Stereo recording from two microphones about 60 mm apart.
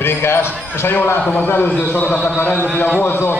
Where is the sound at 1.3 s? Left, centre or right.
Left.